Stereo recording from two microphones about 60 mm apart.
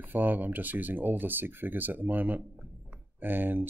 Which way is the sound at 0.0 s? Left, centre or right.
Right.